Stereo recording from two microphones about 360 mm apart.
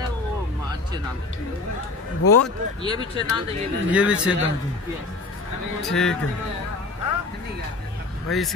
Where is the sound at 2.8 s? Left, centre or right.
Centre.